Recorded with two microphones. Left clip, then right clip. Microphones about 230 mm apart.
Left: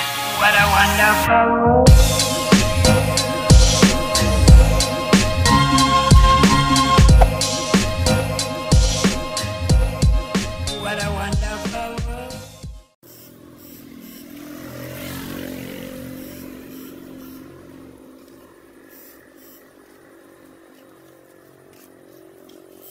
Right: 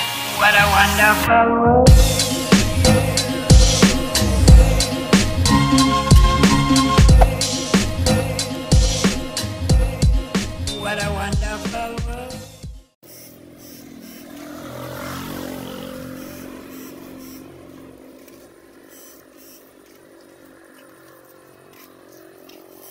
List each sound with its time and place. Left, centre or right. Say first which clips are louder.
0.2 s music: right 1 dB; centre